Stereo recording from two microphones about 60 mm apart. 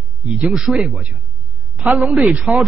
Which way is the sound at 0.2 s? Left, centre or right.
Centre.